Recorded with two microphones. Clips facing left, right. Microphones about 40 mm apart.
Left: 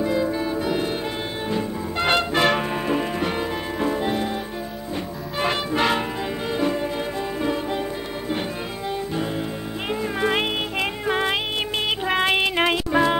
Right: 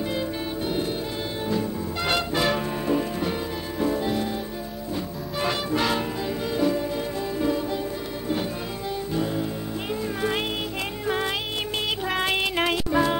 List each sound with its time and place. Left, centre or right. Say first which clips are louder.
1.5 s music: left 1 dB; left
2.3 s music: left 4 dB; left
3.8 s music: left 1 dB; left
5.4 s music: left 3 dB; left
10.2 s music: left 5 dB; left